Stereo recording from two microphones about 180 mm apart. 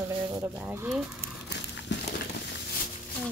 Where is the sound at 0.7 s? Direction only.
5° right (ahead or behind).